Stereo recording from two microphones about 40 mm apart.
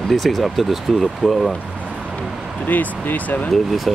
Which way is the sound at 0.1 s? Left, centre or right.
Centre.